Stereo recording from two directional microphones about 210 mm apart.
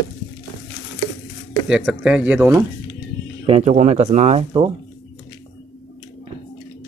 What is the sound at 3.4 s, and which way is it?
Speech, 30° right (ahead or behind).